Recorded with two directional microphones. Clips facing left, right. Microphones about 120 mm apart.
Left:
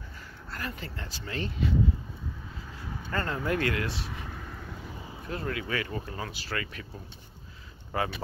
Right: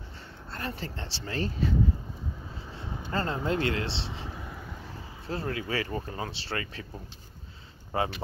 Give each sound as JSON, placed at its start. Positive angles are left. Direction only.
{"t": 0.5, "sound": "speech", "side_deg": -30}
{"t": 2.8, "sound": "speech", "side_deg": -25}
{"t": 4.5, "sound": "vehicle", "side_deg": -5}
{"t": 5.2, "sound": "speech", "side_deg": -30}
{"t": 7.9, "sound": "speech", "side_deg": -30}